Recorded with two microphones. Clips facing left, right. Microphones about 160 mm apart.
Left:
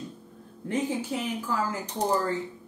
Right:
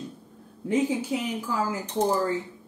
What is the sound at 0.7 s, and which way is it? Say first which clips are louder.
Speech: right 4 dB; 10° right (ahead or behind).